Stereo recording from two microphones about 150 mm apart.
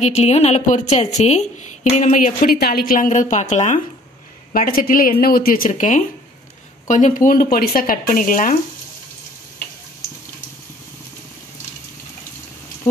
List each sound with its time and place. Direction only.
0.0 s a woman's voice: 45° left (ahead or behind)
4.5 s speech: 75° left (ahead or behind)